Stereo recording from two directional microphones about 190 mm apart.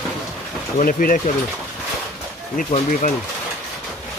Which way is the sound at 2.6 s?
40° left (ahead or behind).